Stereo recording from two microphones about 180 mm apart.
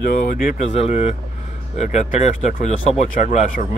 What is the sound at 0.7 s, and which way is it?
Speech, 35° left (ahead or behind).